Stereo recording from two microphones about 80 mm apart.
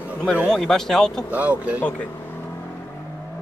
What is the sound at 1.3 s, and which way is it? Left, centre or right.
Speech, centre.